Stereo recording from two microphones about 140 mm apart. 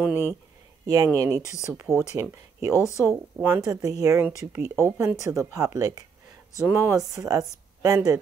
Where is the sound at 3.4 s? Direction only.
20° right (ahead or behind).